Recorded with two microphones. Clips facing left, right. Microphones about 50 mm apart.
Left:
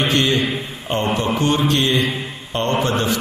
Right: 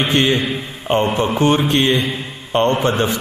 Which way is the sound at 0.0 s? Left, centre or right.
Centre.